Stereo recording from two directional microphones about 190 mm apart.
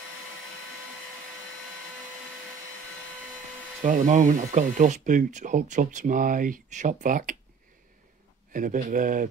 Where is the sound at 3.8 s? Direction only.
45° right (ahead or behind).